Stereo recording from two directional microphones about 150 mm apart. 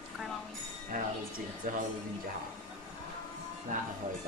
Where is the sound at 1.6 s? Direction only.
65° right (ahead or behind).